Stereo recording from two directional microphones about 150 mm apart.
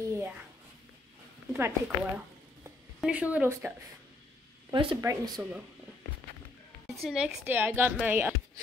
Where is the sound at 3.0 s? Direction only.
10° right (ahead or behind).